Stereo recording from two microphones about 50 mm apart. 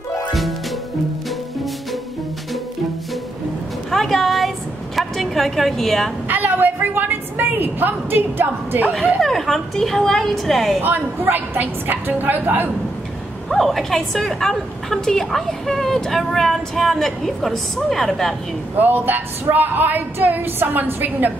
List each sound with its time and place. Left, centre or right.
0.3 s music: centre
3.9 s music: centre
4.9 s a sound: centre
6.2 s a woman's voice: right
9.2 s a woman's voice: centre
10.8 s a woman's voice: right
13.5 s a woman's voice: centre
18.8 s a woman's voice: right